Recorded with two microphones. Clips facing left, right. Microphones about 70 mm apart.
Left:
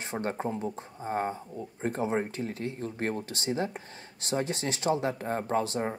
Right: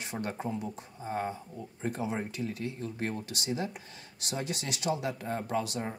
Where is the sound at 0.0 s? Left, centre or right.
Left.